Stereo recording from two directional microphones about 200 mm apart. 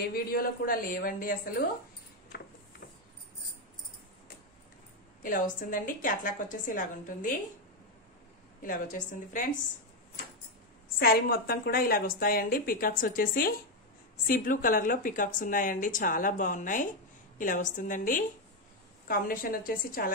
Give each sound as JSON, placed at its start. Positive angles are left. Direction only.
{"t": 0.1, "sound": "speech", "side_deg": 50}
{"t": 5.2, "sound": "a woman's voice", "side_deg": 40}
{"t": 8.6, "sound": "a woman's voice", "side_deg": 40}
{"t": 11.0, "sound": "a woman's voice", "side_deg": 50}